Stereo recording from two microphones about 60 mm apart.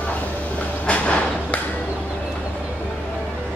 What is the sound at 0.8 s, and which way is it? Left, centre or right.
Train, left.